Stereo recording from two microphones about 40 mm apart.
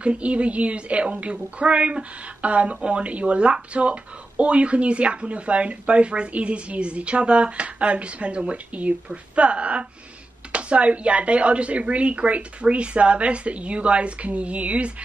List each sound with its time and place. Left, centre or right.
0.0 s a woman's voice: right